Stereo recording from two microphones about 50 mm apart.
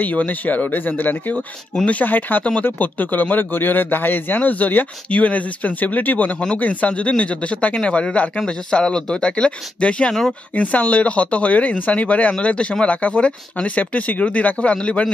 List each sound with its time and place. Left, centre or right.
0.0 s speech: left